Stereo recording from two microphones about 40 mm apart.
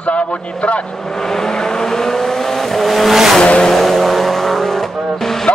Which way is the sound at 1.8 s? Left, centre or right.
Centre.